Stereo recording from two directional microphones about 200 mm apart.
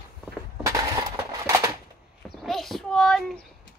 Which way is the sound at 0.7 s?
15° right (ahead or behind).